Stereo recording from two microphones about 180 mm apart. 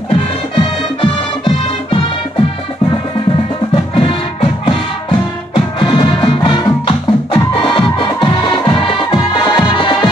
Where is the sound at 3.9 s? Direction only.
30° left (ahead or behind).